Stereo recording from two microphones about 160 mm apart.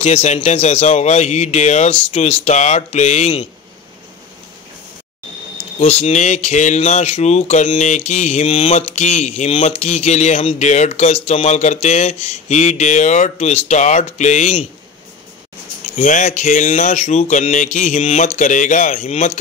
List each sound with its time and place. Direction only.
0.0 s speech: 45° left (ahead or behind)
5.8 s speech: 40° left (ahead or behind)
16.0 s speech: 50° left (ahead or behind)